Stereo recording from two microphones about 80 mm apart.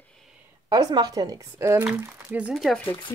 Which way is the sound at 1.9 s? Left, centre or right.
Centre.